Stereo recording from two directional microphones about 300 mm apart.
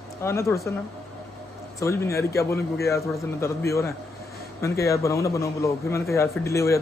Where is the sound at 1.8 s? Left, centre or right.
Centre.